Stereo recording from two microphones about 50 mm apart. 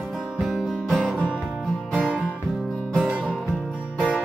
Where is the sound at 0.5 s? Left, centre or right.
Centre.